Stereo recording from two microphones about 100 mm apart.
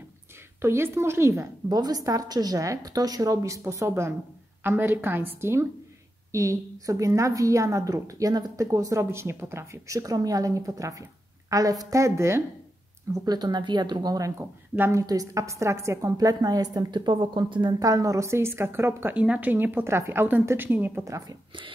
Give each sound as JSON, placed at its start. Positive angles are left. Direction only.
{"t": 0.6, "sound": "a woman's voice", "side_deg": -25}
{"t": 13.1, "sound": "a woman's voice", "side_deg": -40}
{"t": 14.4, "sound": "a woman's voice", "side_deg": -25}
{"t": 21.0, "sound": "a woman's voice", "side_deg": -30}